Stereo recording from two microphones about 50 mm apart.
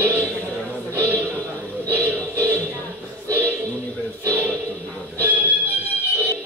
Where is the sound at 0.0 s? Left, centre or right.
Right.